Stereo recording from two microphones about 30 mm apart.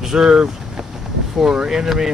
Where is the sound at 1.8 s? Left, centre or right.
Centre.